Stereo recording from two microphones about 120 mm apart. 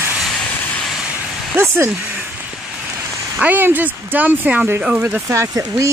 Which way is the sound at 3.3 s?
15° right (ahead or behind).